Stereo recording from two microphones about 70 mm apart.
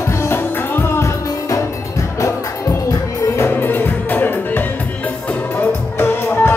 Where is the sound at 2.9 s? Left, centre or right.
Left.